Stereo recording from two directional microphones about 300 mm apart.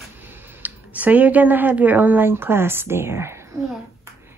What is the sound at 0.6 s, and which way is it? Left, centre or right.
Speech, centre.